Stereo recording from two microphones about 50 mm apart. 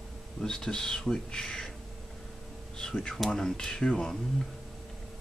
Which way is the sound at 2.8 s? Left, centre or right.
Centre.